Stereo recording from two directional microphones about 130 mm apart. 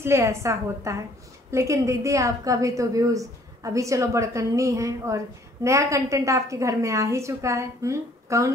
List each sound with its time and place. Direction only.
0.0 s a woman's voice: 20° right (ahead or behind)